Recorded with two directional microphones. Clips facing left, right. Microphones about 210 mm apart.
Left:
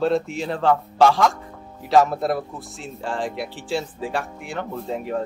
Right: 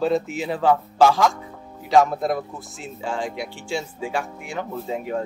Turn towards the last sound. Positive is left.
turn(degrees=0)  # may be behind; listen again after turning